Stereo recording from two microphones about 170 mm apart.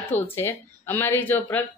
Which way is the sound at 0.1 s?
10° left (ahead or behind).